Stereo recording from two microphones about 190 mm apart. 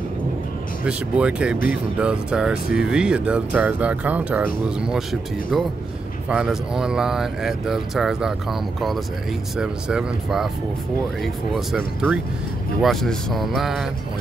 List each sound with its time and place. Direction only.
0.8 s speech: 5° right (ahead or behind)
6.2 s speech: 5° right (ahead or behind)
11.5 s speech: 5° right (ahead or behind)